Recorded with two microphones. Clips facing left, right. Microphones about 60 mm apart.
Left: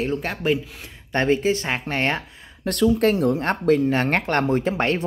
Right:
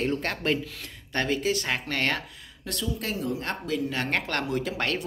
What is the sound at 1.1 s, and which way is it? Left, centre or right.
Speech, left.